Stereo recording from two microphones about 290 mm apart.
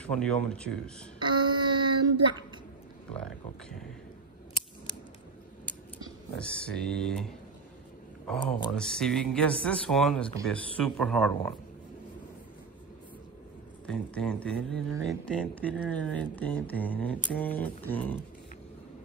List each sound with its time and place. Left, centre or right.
0.0 s speech: centre
1.2 s child singing: centre
3.2 s speech: centre
6.3 s speech: centre
8.7 s speech: centre
13.8 s speech: centre